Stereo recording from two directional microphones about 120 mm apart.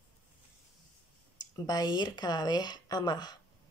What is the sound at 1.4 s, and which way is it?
Speech, 35° left (ahead or behind).